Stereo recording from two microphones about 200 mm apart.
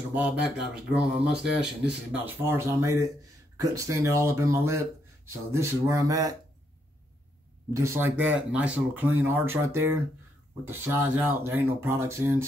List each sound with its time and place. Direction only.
0.1 s speech: 5° right (ahead or behind)
7.7 s speech: 15° right (ahead or behind)